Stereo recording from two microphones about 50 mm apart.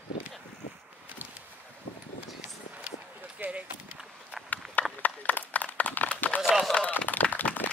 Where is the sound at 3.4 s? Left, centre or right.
Right.